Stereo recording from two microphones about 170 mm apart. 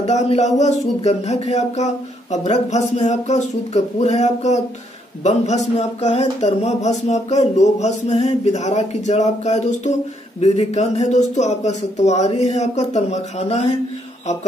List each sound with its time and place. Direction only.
0.0 s speech: 40° left (ahead or behind)